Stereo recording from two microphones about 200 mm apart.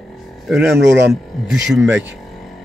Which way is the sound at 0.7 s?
60° right (ahead or behind).